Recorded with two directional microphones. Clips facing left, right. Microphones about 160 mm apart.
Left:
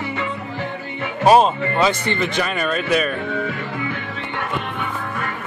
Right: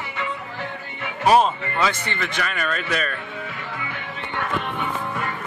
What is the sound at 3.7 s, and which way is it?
Music, 40° left (ahead or behind).